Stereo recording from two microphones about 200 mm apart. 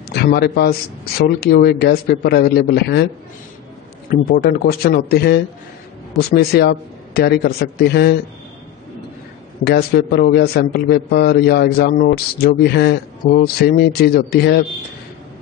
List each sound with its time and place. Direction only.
0.1 s a man's voice: 50° left (ahead or behind)
4.1 s a man's voice: 50° left (ahead or behind)
9.7 s a man's voice: 50° left (ahead or behind)